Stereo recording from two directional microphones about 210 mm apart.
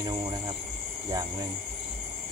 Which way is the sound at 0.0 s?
20° right (ahead or behind).